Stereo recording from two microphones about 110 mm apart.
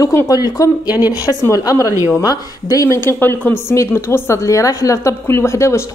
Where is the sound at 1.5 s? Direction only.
30° left (ahead or behind).